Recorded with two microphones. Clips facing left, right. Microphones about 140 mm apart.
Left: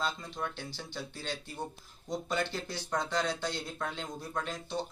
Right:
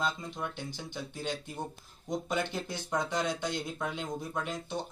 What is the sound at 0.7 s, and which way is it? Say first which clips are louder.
Speech: right 2 dB; 20° right (ahead or behind).